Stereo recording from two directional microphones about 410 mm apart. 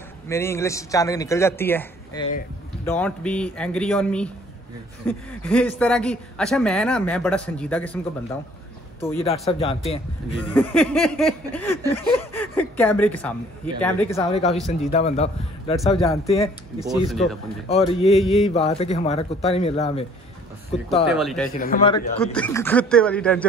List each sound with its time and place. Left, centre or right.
0.3 s a man's voice: centre
9.0 s speech: centre
14.3 s a man's voice: centre
16.8 s speech: centre
17.6 s a man's voice: centre
18.2 s speech: centre
18.5 s a man's voice: centre
21.1 s speech: centre
21.5 s a man's voice: left
21.9 s speech: centre